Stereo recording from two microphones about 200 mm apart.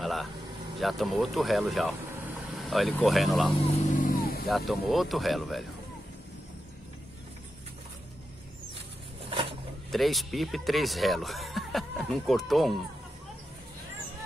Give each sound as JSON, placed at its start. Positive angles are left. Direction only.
{"t": 0.0, "sound": "vehicle", "side_deg": 0}
{"t": 0.7, "sound": "speech", "side_deg": 0}
{"t": 3.9, "sound": "vehicle", "side_deg": 45}
{"t": 4.5, "sound": "speech", "side_deg": 0}
{"t": 9.3, "sound": "a sound", "side_deg": -25}
{"t": 9.8, "sound": "speech", "side_deg": 0}